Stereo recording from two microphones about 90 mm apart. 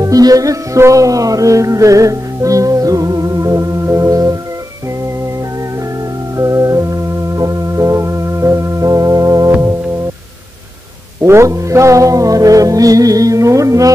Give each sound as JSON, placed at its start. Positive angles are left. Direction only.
{"t": 0.0, "sound": "music", "side_deg": -45}
{"t": 6.3, "sound": "music", "side_deg": -35}
{"t": 11.2, "sound": "music", "side_deg": -30}